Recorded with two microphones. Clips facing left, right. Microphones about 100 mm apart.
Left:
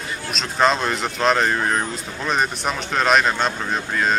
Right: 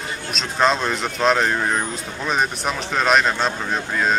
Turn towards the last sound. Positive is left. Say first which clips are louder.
# even
turn(degrees=0)  # may be behind; listen again after turning